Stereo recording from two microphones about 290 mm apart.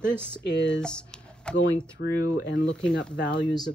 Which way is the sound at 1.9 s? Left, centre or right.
Left.